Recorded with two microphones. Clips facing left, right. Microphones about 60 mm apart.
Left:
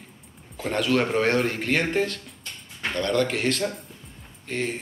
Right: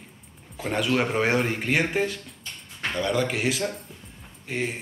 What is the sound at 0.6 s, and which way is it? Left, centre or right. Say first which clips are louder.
Speech: left 1 dB; centre.